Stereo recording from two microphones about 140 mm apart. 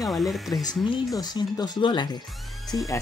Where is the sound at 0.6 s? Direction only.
30° left (ahead or behind).